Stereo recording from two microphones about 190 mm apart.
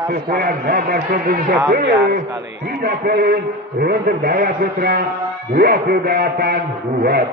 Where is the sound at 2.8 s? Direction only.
50° right (ahead or behind).